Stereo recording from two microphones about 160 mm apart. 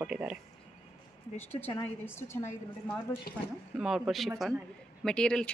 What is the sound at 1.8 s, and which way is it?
Speech, 15° left (ahead or behind).